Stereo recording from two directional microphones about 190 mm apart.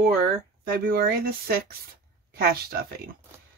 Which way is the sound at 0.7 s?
50° right (ahead or behind).